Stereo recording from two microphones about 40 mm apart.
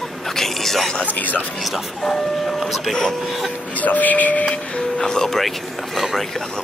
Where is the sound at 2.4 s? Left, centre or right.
Centre.